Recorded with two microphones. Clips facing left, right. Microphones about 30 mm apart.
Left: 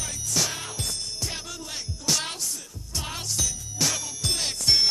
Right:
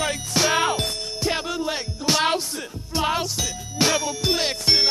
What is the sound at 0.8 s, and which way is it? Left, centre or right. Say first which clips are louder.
Music: right 7 dB; right.